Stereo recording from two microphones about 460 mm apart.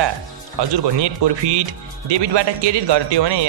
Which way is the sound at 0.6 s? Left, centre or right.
Right.